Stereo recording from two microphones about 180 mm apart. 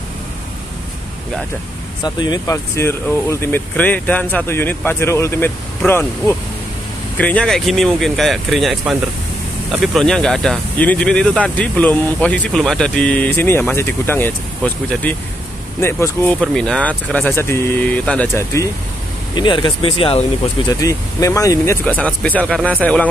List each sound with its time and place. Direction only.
2.0 s speech: 25° left (ahead or behind)
20.8 s speech: 20° left (ahead or behind)